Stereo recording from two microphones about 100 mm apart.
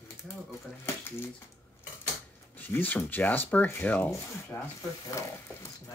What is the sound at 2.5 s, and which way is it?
Speech, 20° left (ahead or behind).